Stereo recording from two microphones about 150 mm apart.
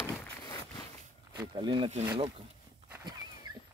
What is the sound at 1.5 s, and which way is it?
Speech, 35° right (ahead or behind).